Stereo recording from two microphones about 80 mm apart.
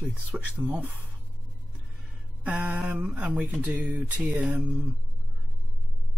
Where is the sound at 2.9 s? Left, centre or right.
Centre.